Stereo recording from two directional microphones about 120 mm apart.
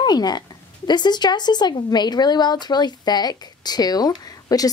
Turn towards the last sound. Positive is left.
turn(degrees=30)  # may be behind; listen again after turning